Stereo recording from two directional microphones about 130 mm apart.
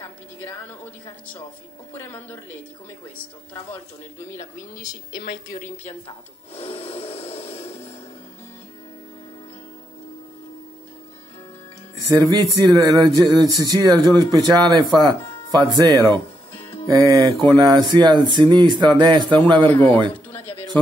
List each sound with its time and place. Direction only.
0.0 s music: 20° left (ahead or behind)
2.0 s speech: 15° left (ahead or behind)
4.7 s a woman's voice: 30° left (ahead or behind)
6.0 s wood: 45° left (ahead or behind)
12.3 s speech: 30° right (ahead or behind)
19.7 s speech: 15° left (ahead or behind)